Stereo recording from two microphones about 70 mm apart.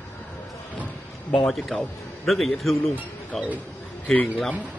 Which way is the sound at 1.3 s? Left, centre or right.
Centre.